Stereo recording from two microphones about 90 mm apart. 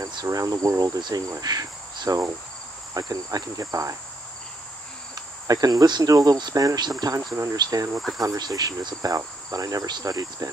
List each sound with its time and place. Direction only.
0.1 s cricket: 45° right (ahead or behind)
1.4 s insect: 45° right (ahead or behind)
5.1 s cricket: 45° right (ahead or behind)
10.0 s insect: 40° right (ahead or behind)